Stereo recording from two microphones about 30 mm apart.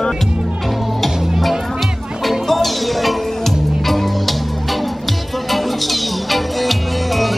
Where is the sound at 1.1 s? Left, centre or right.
Centre.